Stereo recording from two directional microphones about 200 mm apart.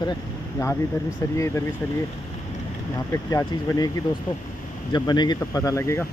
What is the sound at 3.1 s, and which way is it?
Speech, 15° left (ahead or behind).